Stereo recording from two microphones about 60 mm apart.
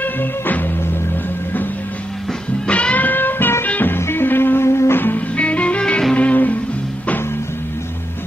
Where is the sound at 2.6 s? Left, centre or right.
Left.